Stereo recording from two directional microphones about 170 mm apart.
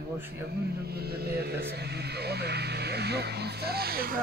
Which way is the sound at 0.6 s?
70° right (ahead or behind).